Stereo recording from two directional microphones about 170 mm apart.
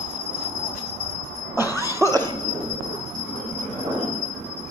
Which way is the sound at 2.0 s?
15° right (ahead or behind).